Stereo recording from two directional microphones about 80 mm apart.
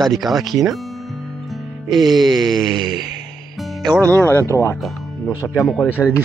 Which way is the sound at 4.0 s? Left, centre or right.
Centre.